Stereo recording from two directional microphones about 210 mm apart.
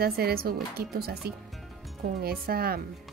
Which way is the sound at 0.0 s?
45° right (ahead or behind).